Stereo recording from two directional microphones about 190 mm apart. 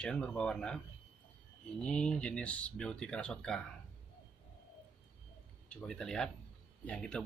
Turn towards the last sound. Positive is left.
turn(degrees=5)  # may be behind; listen again after turning